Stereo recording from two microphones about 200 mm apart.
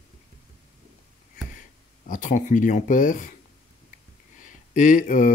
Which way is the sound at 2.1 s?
40° left (ahead or behind).